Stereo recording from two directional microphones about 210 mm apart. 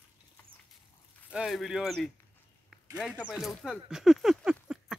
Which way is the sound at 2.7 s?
Centre (ahead or behind).